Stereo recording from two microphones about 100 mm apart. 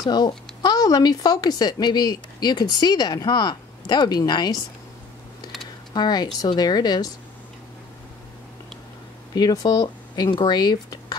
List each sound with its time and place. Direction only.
0.0 s speech: 45° left (ahead or behind)
5.9 s speech: 45° left (ahead or behind)
9.3 s speech: 40° left (ahead or behind)